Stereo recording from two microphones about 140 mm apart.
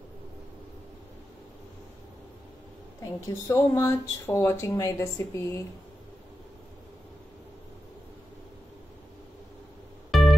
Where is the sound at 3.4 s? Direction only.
20° left (ahead or behind).